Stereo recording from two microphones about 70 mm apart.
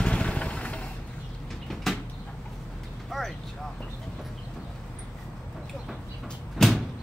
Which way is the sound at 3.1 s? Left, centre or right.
Centre.